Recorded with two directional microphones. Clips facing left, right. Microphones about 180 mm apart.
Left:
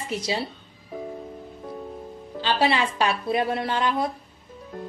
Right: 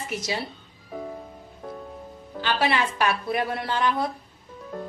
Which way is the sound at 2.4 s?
25° left (ahead or behind).